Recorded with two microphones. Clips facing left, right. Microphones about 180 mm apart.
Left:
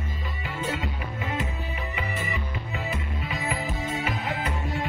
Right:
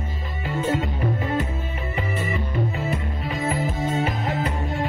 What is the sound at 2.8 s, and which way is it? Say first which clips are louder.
Music: right 5 dB; 45° right (ahead or behind).